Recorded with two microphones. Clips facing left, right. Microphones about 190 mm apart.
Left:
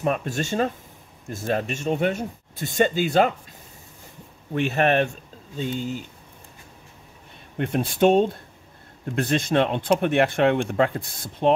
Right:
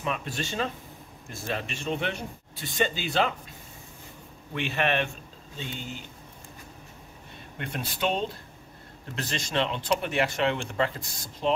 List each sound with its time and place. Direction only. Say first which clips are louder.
0.0 s speech: left 7 dB; 45° left (ahead or behind)
4.6 s speech: left 7 dB; 45° left (ahead or behind)
7.5 s speech: left 11 dB; 50° left (ahead or behind)